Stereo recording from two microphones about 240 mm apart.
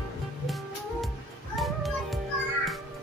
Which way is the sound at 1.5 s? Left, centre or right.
Centre.